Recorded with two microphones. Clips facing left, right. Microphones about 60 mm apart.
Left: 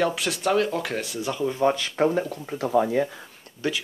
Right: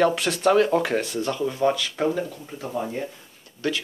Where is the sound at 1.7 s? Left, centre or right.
Left.